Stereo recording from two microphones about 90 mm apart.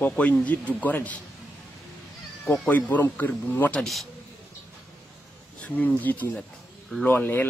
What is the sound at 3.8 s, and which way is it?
Speech, centre (ahead or behind).